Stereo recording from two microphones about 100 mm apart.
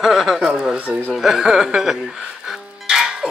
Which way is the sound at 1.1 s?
5° right (ahead or behind).